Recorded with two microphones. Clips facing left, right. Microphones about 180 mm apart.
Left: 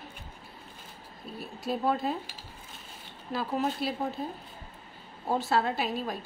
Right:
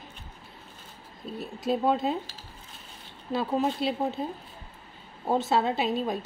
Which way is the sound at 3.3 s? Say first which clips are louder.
Right 3 dB; 25° right (ahead or behind).